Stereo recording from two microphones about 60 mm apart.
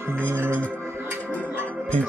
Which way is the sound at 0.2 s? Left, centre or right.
Right.